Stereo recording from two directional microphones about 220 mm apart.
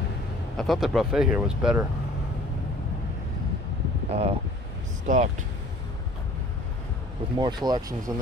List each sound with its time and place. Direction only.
0.6 s speech: centre (ahead or behind)
4.1 s speech: 25° right (ahead or behind)
7.3 s speech: 20° right (ahead or behind)